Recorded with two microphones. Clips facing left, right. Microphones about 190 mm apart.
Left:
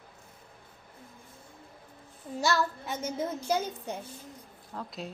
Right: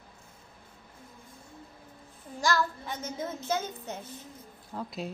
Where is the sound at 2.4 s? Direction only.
5° left (ahead or behind).